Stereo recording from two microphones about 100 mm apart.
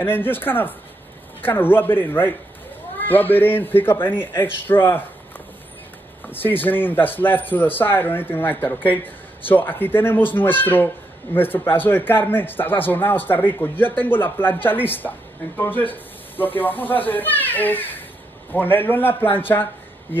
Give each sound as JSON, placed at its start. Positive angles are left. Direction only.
{"t": 0.0, "sound": "a man's voice", "side_deg": 20}
{"t": 6.2, "sound": "a man's voice", "side_deg": 20}